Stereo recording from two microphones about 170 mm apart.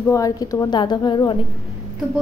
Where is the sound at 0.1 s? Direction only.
20° left (ahead or behind).